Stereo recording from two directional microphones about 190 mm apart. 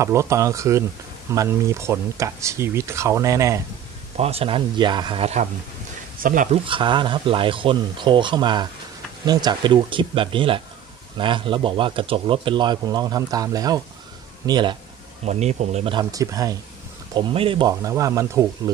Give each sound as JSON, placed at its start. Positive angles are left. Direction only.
{"t": 0.0, "sound": "speech", "side_deg": -15}
{"t": 4.2, "sound": "speech", "side_deg": -30}
{"t": 6.6, "sound": "speech", "side_deg": -25}
{"t": 15.2, "sound": "speech", "side_deg": -35}